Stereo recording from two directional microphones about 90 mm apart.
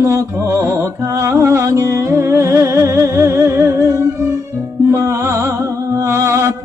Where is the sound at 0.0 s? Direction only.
30° right (ahead or behind).